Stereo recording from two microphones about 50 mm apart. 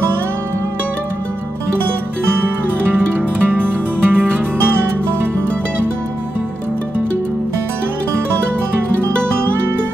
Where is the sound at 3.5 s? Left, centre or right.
Right.